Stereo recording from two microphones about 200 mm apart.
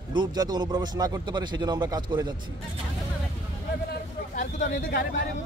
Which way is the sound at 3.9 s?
35° left (ahead or behind).